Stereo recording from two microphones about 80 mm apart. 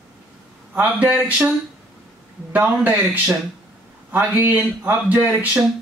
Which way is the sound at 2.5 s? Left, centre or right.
Right.